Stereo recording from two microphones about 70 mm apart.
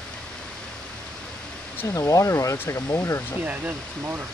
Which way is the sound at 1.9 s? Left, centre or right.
Left.